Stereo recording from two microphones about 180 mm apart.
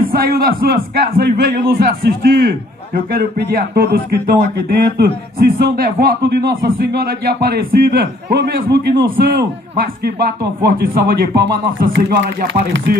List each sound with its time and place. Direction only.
0.0 s a man's voice: 55° right (ahead or behind)